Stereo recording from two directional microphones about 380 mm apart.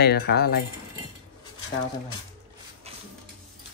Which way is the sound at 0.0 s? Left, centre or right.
Left.